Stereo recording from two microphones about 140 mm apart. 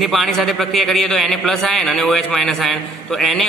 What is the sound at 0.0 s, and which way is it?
A man's voice, centre (ahead or behind).